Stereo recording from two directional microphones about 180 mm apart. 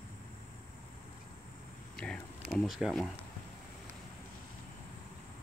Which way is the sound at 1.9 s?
5° left (ahead or behind).